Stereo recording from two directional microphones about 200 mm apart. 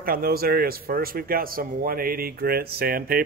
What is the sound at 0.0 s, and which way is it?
Speech, 45° right (ahead or behind).